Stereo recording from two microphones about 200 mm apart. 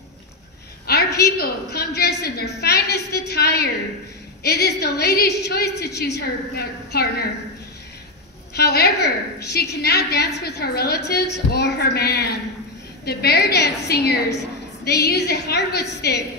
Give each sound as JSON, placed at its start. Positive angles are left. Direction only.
{"t": 0.8, "sound": "a woman's voice", "side_deg": 55}
{"t": 8.5, "sound": "a woman's voice", "side_deg": 55}